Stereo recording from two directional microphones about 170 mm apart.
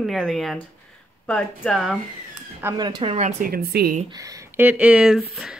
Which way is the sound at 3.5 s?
65° right (ahead or behind).